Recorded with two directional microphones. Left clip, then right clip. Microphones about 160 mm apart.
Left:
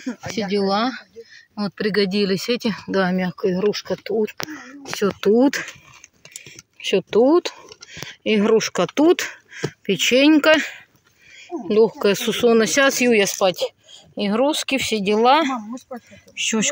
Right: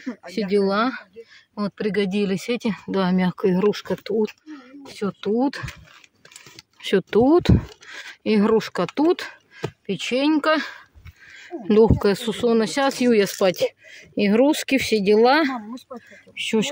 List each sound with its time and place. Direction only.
0.4 s speech: centre (ahead or behind)
1.8 s speech: 15° left (ahead or behind); by 3.2 s centre (ahead or behind)
3.2 s speech: 20° right (ahead or behind)
4.6 s speech: 10° left (ahead or behind)
6.8 s speech: 30° right (ahead or behind); by 9.6 s centre (ahead or behind)
9.7 s speech: 10° left (ahead or behind)
11.6 s speech: 35° right (ahead or behind)
12.0 s speech: 10° right (ahead or behind)
12.3 s speech: centre (ahead or behind)
13.4 s speech: 45° right (ahead or behind); by 15.5 s 25° right (ahead or behind)
15.9 s speech: centre (ahead or behind)
16.3 s speech: 15° right (ahead or behind)